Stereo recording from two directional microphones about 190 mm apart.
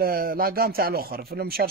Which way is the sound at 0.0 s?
50° right (ahead or behind).